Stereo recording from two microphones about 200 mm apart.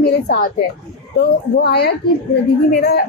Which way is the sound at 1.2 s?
55° left (ahead or behind).